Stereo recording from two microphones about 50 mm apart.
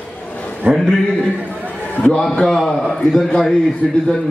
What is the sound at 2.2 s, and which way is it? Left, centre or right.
A man's voice, centre.